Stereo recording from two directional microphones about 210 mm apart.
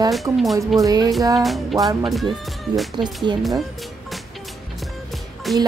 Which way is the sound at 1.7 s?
15° right (ahead or behind).